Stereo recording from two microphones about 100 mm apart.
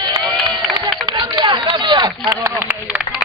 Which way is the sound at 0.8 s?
50° right (ahead or behind).